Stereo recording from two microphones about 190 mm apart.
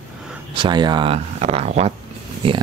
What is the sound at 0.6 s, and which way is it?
Speech, 25° right (ahead or behind).